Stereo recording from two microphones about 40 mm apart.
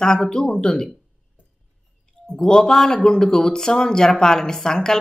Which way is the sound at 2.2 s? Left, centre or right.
Left.